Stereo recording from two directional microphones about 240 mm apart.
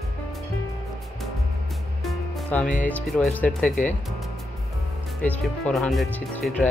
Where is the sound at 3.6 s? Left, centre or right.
Left.